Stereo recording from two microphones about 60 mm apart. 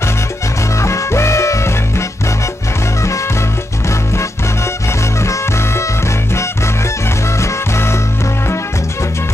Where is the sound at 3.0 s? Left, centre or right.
Left.